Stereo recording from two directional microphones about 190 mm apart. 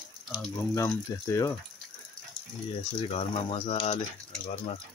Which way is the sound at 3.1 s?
30° left (ahead or behind).